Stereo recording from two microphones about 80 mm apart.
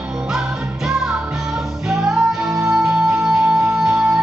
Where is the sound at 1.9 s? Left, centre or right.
Centre.